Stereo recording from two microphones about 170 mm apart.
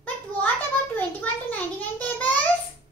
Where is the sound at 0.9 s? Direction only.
10° left (ahead or behind).